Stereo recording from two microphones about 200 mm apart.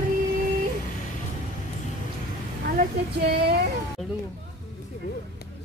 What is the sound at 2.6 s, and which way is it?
Speech, 50° right (ahead or behind).